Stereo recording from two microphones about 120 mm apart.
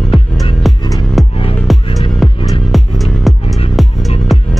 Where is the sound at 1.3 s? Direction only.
50° left (ahead or behind).